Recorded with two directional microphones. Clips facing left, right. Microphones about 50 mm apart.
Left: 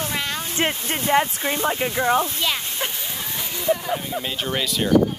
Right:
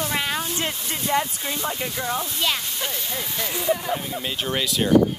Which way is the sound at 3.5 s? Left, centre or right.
Centre.